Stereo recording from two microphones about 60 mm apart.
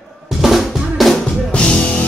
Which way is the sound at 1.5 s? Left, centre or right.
Centre.